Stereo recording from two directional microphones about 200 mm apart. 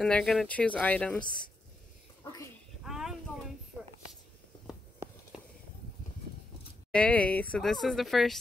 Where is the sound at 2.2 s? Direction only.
15° left (ahead or behind).